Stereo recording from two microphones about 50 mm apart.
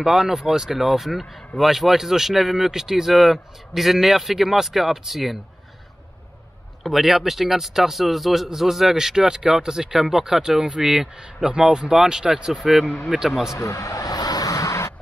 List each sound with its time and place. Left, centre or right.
0.0 s a man's voice: centre
6.8 s a man's voice: centre
13.6 s a man's voice: left
14.6 s a sound: left